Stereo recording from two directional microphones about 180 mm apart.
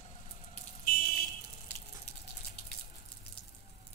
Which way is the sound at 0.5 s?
50° left (ahead or behind).